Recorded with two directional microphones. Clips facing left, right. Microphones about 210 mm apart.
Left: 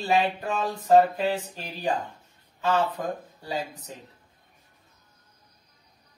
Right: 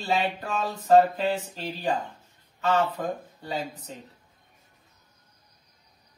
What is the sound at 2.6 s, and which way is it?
Speech, 15° left (ahead or behind).